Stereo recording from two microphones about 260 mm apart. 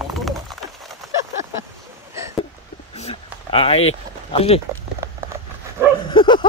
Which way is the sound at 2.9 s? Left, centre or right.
Left.